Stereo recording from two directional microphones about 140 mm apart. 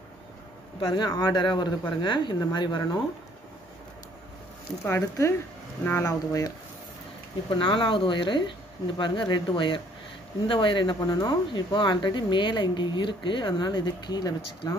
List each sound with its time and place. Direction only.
0.7 s speech: 35° left (ahead or behind)
4.8 s speech: 20° left (ahead or behind)
7.5 s speech: 35° left (ahead or behind)